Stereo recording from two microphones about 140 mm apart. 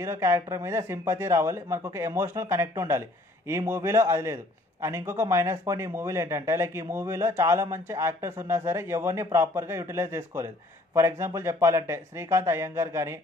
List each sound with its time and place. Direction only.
0.0 s speech: 20° right (ahead or behind)